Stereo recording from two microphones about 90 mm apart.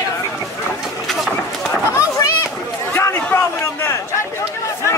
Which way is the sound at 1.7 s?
30° left (ahead or behind).